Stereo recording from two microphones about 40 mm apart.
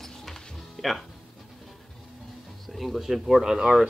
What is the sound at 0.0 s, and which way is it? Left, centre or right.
Music, centre.